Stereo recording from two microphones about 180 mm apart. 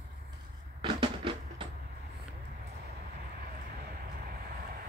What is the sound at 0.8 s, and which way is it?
Music, 25° right (ahead or behind).